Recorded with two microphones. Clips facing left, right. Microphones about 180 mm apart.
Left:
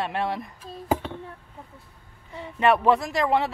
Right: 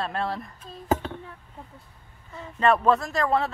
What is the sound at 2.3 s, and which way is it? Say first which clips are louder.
Speech: left 1 dB; 15° left (ahead or behind).